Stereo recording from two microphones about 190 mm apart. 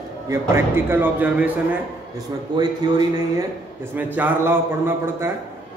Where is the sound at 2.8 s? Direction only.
20° right (ahead or behind).